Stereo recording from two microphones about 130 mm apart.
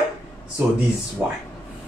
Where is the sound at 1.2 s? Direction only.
15° right (ahead or behind).